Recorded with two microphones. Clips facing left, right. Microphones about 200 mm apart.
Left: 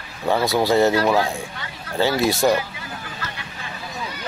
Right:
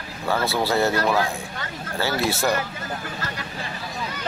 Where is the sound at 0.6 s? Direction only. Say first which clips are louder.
Left 5 dB; 20° left (ahead or behind).